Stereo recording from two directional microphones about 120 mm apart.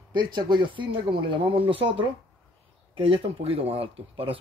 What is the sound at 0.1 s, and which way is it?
Speech, 40° right (ahead or behind).